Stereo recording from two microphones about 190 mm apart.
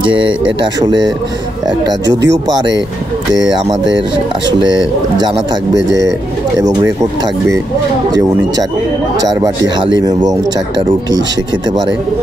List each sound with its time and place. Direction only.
0.7 s speech: 20° right (ahead or behind)
2.0 s speech: 65° right (ahead or behind)
4.6 s speech: 20° right (ahead or behind)
6.8 s speech: 15° right (ahead or behind)
9.4 s speech: 20° right (ahead or behind)